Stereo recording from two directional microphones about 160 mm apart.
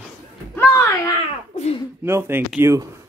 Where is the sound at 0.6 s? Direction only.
20° left (ahead or behind).